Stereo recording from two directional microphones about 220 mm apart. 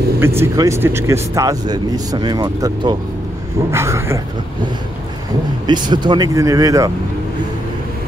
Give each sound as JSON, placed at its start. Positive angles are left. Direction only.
{"t": 0.4, "sound": "speech", "side_deg": -10}
{"t": 5.7, "sound": "speech", "side_deg": -20}